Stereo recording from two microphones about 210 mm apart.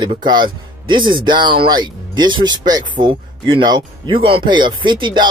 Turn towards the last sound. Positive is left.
turn(degrees=-20)  # may be behind; listen again after turning